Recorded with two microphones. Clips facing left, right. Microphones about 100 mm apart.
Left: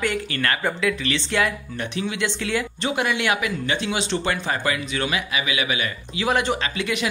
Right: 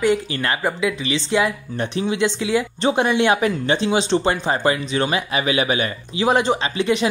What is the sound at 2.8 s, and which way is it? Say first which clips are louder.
Speech: right 7 dB; 30° right (ahead or behind).